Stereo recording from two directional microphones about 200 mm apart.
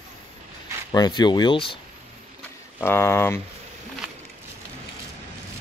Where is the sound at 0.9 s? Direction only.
20° left (ahead or behind).